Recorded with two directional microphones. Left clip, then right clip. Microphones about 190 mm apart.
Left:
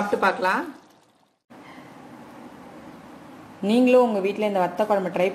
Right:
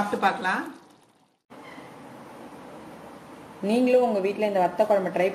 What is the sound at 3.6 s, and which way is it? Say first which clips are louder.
A woman's voice: left 3 dB; 35° left (ahead or behind).